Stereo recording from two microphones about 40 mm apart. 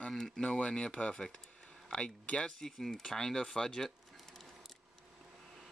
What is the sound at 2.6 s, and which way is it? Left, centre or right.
Speech, centre.